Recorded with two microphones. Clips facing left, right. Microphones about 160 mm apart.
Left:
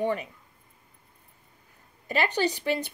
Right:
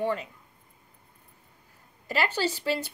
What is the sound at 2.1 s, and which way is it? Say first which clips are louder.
Speech: left 2 dB; 20° left (ahead or behind).